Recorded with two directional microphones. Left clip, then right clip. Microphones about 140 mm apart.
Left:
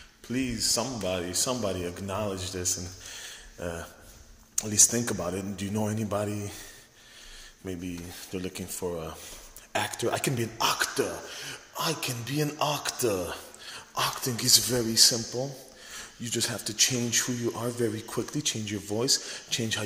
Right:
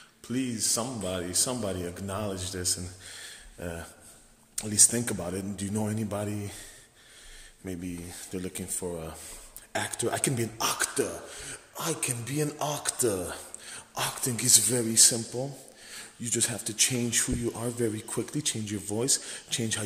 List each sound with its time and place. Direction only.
0.3 s a man's voice: 25° right (ahead or behind)
7.6 s a man's voice: 20° right (ahead or behind)
11.7 s a man's voice: 30° right (ahead or behind)
13.3 s a man's voice: 30° right (ahead or behind)